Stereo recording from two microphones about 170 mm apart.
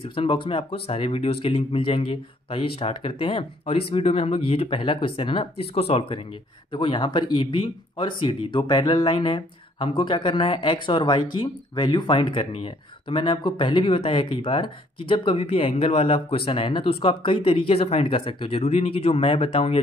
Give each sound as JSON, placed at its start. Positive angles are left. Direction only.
{"t": 0.0, "sound": "speech", "side_deg": 30}